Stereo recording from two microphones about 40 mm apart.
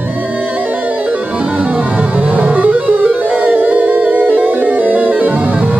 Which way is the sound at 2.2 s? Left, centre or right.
Right.